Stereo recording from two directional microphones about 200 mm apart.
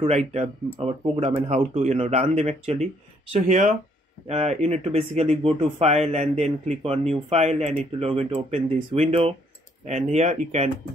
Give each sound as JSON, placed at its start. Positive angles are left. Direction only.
{"t": 0.0, "sound": "speech", "side_deg": -35}